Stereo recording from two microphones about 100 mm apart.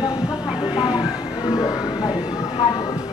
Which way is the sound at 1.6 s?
40° left (ahead or behind).